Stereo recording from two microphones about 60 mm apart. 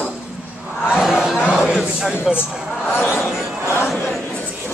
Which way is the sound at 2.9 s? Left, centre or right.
Left.